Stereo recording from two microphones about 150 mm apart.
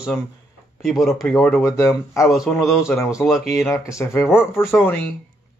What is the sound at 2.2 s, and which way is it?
Speech, 5° right (ahead or behind).